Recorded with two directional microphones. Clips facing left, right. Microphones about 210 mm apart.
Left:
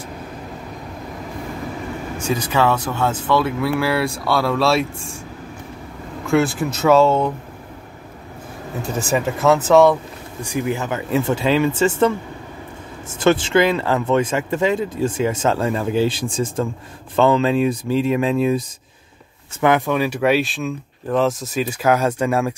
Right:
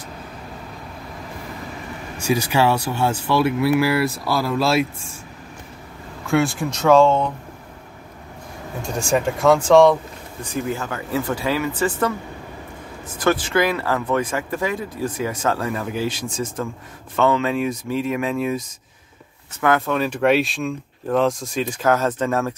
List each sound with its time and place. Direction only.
2.1 s speech: 10° right (ahead or behind)
6.2 s speech: centre (ahead or behind)
8.8 s speech: centre (ahead or behind)
10.4 s speech: 15° left (ahead or behind)
13.1 s speech: 25° left (ahead or behind)
19.6 s speech: 15° left (ahead or behind)